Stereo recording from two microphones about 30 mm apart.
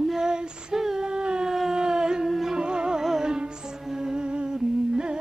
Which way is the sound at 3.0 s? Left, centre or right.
Centre.